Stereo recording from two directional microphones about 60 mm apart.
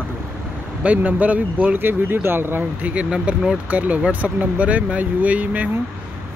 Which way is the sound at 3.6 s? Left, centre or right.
Right.